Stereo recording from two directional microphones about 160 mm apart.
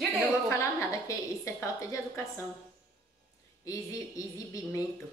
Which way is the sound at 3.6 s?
20° left (ahead or behind).